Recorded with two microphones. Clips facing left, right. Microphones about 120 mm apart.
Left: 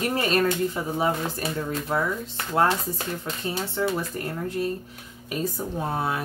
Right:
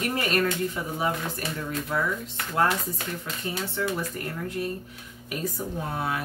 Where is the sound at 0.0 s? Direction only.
30° left (ahead or behind).